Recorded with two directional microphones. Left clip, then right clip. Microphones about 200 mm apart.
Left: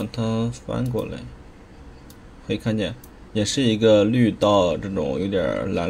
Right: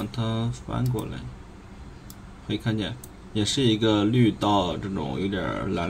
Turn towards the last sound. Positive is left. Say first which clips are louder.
# left 6 dB
turn(degrees=25)  # may be behind; listen again after turning